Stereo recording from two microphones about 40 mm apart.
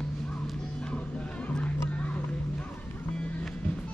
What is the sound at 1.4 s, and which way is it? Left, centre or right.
Music, left.